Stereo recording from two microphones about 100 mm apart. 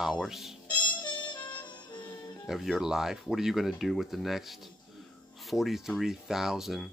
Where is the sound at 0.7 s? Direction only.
50° left (ahead or behind).